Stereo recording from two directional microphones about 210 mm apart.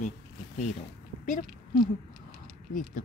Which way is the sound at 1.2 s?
40° left (ahead or behind).